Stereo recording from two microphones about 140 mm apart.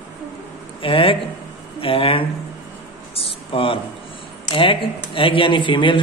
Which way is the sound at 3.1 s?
40° left (ahead or behind).